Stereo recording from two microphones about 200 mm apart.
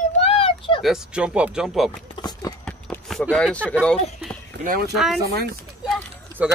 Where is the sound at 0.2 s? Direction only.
30° left (ahead or behind).